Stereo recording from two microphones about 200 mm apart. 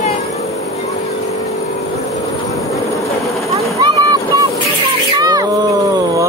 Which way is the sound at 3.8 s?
20° right (ahead or behind).